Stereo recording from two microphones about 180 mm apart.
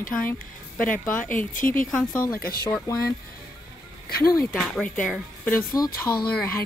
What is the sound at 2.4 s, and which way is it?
Speech, 55° left (ahead or behind).